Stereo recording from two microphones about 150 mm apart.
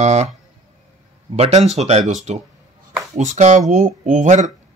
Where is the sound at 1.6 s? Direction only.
45° right (ahead or behind).